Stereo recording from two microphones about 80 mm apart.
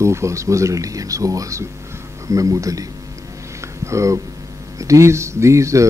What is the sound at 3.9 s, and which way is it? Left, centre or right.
Speech, right.